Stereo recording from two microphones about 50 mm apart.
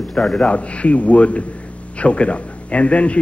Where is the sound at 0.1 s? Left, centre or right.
Centre.